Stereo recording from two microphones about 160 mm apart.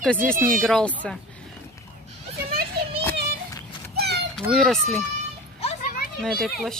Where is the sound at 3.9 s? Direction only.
90° right.